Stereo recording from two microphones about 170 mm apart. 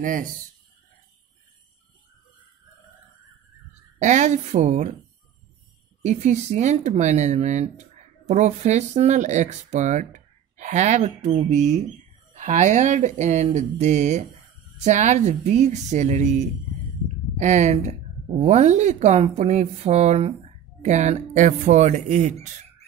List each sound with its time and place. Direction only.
0.0 s speech: 55° right (ahead or behind)
4.0 s a woman's voice: 45° right (ahead or behind)
6.0 s a woman's voice: 45° right (ahead or behind)